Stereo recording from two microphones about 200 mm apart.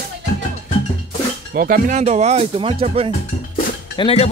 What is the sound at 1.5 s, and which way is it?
Speech, 45° right (ahead or behind).